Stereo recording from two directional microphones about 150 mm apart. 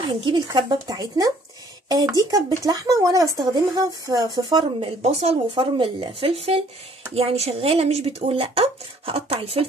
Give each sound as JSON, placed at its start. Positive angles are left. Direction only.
{"t": 0.2, "sound": "speech", "side_deg": -30}
{"t": 5.0, "sound": "speech", "side_deg": -45}